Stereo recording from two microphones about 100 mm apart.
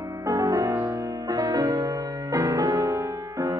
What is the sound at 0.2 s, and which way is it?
Music, 35° right (ahead or behind).